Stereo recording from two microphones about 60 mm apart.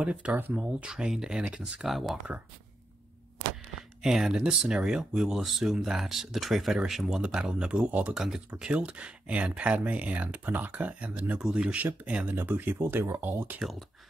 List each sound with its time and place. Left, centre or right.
0.0 s speech: right
0.6 s speech: centre
1.8 s speech: centre
4.0 s speech: centre
7.2 s speech: centre
8.1 s speech: centre
8.5 s speech: centre
12.4 s speech: right
13.6 s speech: centre